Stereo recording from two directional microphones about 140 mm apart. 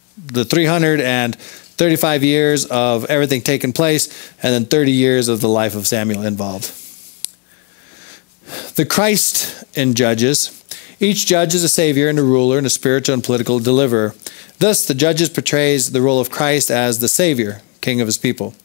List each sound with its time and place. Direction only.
0.3 s speech: 10° left (ahead or behind)
6.3 s speech: 30° left (ahead or behind)
8.5 s speech: 10° left (ahead or behind)